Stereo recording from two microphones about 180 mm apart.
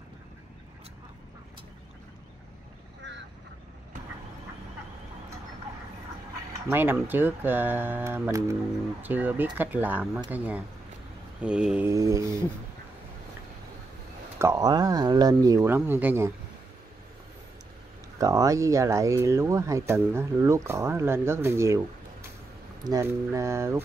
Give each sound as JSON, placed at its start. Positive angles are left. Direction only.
{"t": 6.7, "sound": "speech", "side_deg": -10}
{"t": 11.4, "sound": "mantra", "side_deg": -5}
{"t": 11.9, "sound": "speech", "side_deg": -15}
{"t": 14.4, "sound": "speech", "side_deg": -20}
{"t": 18.2, "sound": "speech", "side_deg": -20}
{"t": 22.8, "sound": "speech", "side_deg": -15}